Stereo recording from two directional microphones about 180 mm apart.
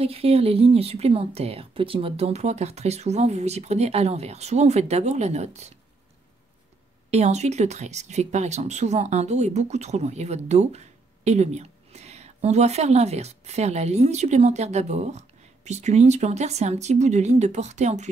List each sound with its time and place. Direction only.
0.0 s a woman's voice: 35° right (ahead or behind)
7.1 s a woman's voice: 40° right (ahead or behind)